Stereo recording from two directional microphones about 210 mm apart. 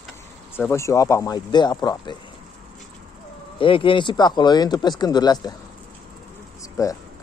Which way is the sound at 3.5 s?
25° left (ahead or behind).